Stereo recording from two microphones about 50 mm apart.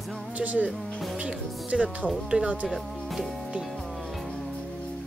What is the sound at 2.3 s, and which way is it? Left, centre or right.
Speech, right.